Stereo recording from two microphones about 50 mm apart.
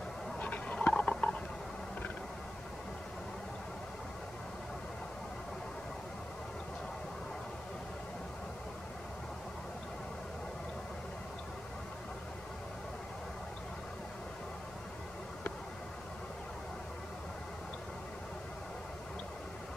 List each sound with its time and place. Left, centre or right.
0.4 s fowl: left